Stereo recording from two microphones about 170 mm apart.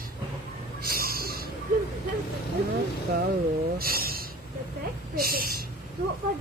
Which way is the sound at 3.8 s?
60° right (ahead or behind).